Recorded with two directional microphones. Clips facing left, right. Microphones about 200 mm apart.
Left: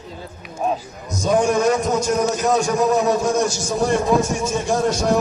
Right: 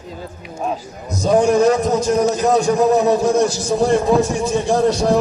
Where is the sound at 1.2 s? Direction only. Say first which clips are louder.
Right 4 dB; 35° right (ahead or behind).